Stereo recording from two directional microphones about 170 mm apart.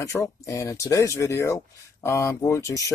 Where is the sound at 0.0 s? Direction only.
20° left (ahead or behind).